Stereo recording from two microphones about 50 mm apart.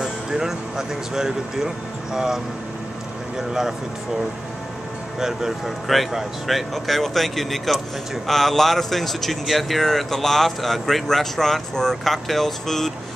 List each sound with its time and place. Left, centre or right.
0.0 s speech: centre
5.9 s speech: centre